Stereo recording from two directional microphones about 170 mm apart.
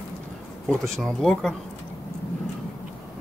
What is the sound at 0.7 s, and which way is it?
Speech, centre (ahead or behind).